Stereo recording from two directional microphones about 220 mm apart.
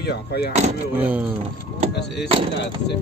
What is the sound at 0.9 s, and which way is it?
Speech, 10° right (ahead or behind).